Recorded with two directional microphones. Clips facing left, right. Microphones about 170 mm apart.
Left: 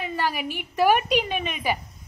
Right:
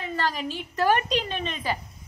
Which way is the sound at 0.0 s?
15° left (ahead or behind).